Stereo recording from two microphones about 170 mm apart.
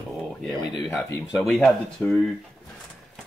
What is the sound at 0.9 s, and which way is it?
Speech, 10° left (ahead or behind).